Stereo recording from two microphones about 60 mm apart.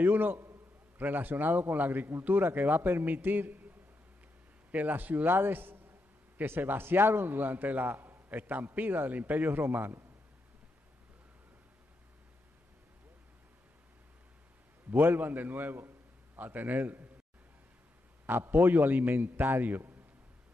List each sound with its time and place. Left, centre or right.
0.0 s a man's voice: right
4.6 s a man's voice: right
14.9 s a man's voice: right
18.2 s a man's voice: right